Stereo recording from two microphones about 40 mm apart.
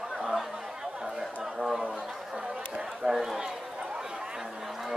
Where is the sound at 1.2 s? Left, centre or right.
Centre.